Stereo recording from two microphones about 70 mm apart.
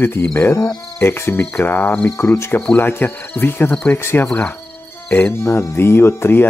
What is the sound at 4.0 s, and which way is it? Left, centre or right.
Speech, left.